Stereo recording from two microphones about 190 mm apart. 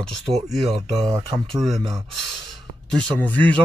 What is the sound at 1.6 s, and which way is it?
Speech, centre (ahead or behind).